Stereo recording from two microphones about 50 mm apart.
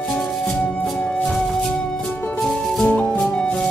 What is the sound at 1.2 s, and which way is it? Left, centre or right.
Music, centre.